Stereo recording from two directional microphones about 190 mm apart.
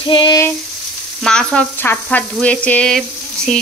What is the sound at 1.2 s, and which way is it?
Frying, 5° left (ahead or behind).